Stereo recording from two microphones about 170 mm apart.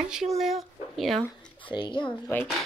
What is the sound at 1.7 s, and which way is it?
Speech, 25° left (ahead or behind).